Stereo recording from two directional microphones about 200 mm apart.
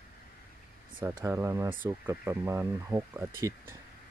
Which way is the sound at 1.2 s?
15° right (ahead or behind).